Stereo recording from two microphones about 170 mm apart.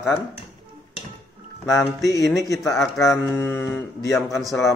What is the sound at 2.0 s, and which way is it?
Speech, 20° left (ahead or behind).